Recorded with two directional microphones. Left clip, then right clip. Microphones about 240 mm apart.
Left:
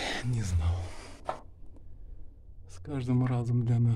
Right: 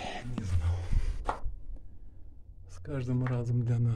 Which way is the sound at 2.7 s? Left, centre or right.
Centre.